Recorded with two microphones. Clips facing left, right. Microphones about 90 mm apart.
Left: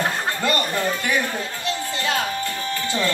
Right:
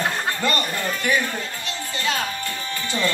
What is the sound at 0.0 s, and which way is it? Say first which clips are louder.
Music: left 1 dB; 10° left (ahead or behind).